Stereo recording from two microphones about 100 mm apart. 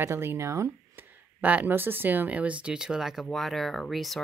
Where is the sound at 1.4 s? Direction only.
15° right (ahead or behind).